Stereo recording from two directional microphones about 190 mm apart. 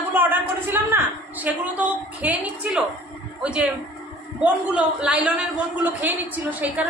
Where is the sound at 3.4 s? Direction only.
5° right (ahead or behind).